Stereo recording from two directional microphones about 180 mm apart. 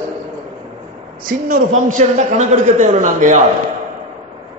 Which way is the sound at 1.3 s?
50° right (ahead or behind).